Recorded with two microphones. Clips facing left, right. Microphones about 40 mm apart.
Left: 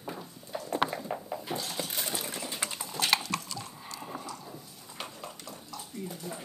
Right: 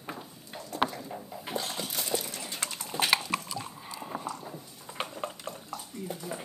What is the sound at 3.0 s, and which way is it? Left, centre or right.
Chewing, centre.